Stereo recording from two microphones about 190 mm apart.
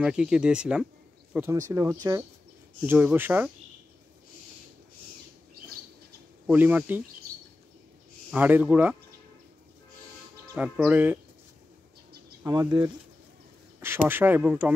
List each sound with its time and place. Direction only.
0.0 s speech: 5° right (ahead or behind)
6.4 s speech: 10° right (ahead or behind)
8.3 s speech: 10° right (ahead or behind)
10.6 s speech: 10° right (ahead or behind)
12.4 s speech: 20° right (ahead or behind)
13.7 s speech: 10° right (ahead or behind)